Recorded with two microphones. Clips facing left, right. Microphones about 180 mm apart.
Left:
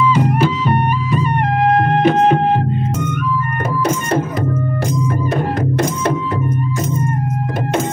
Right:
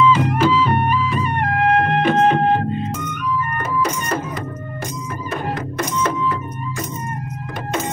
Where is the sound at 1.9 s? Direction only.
40° left (ahead or behind).